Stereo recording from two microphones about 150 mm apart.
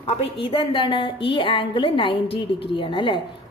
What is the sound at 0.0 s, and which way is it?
A woman's voice, 40° left (ahead or behind).